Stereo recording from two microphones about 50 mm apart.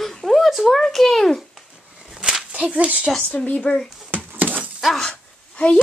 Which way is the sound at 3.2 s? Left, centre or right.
Left.